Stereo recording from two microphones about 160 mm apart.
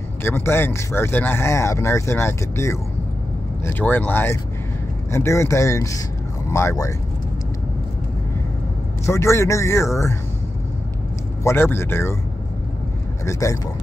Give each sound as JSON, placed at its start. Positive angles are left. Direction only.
{"t": 0.2, "sound": "speech", "side_deg": 15}
{"t": 9.0, "sound": "speech", "side_deg": 15}
{"t": 11.4, "sound": "speech", "side_deg": 15}
{"t": 13.2, "sound": "speech", "side_deg": 20}